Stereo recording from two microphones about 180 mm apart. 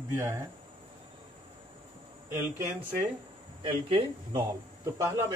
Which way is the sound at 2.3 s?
15° right (ahead or behind).